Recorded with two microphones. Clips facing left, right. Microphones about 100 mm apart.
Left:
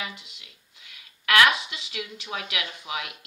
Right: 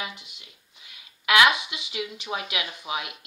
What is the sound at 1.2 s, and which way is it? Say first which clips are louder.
Speech: right 1 dB; 15° right (ahead or behind).